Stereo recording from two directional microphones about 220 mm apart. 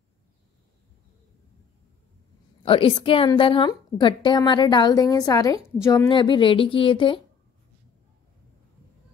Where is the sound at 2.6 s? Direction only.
25° left (ahead or behind).